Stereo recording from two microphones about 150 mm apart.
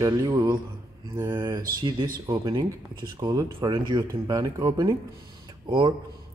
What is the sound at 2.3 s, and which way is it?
Speech, 25° right (ahead or behind).